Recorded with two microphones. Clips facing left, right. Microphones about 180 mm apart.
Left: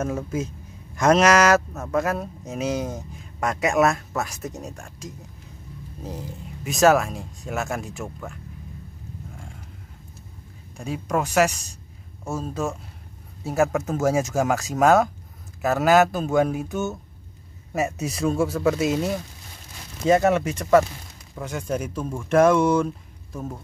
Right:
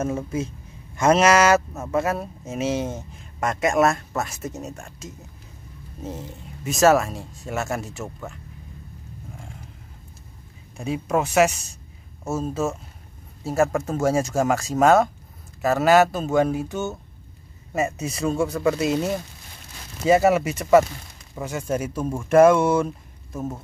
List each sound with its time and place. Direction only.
0.0 s speech: centre (ahead or behind)
10.8 s speech: 5° right (ahead or behind)